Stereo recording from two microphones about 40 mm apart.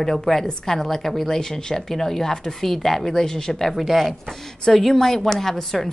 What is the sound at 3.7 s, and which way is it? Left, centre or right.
A woman's voice, centre.